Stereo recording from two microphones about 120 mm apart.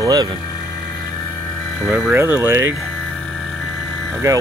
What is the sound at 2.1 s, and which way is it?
Speech, 20° right (ahead or behind).